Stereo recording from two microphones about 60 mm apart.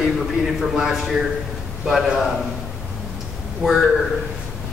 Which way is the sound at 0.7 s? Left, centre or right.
Centre.